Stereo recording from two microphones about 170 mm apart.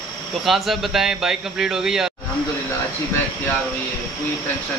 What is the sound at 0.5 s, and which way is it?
A man's voice, centre (ahead or behind).